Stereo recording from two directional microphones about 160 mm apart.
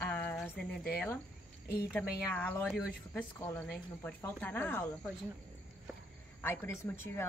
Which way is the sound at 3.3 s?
15° left (ahead or behind).